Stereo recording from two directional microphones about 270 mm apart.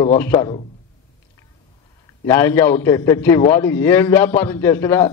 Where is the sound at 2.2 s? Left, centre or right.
Centre.